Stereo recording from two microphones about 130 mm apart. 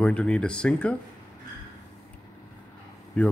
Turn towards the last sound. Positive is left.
turn(degrees=10)  # may be behind; listen again after turning